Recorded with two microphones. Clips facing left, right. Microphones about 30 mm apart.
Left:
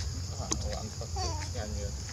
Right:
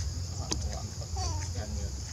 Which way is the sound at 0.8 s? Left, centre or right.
Centre.